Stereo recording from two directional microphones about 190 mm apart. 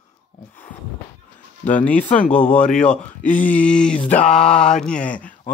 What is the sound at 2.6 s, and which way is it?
A man's voice, 5° left (ahead or behind).